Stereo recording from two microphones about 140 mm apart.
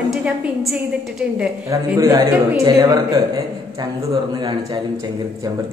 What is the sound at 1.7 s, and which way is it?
A man's voice, 25° right (ahead or behind).